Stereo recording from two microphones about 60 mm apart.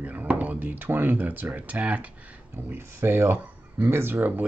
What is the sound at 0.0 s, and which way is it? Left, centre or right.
Speech, right.